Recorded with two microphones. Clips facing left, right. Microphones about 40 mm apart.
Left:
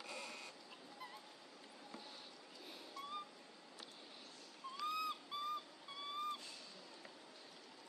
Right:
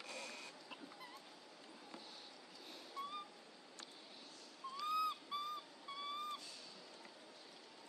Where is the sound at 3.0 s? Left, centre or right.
Right.